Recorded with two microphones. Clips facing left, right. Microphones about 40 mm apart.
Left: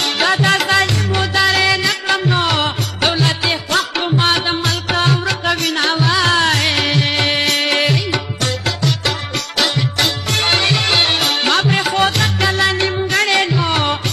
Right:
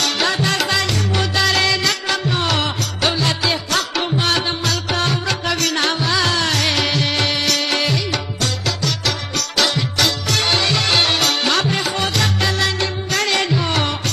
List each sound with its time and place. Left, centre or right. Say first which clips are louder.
0.2 s music: left 7 dB; left
1.1 s music: left 3 dB; centre
2.4 s music: left 3 dB; centre
4.2 s music: left 4 dB; left
6.0 s music: left 4 dB; left
6.7 s music: left 2 dB; centre
7.0 s music: left 3 dB; left
9.6 s music: left 1 dB; centre
10.3 s music: left 4 dB; left
11.1 s music: left 2 dB; left
11.7 s music: left 5 dB; left
13.5 s music: left 2 dB; centre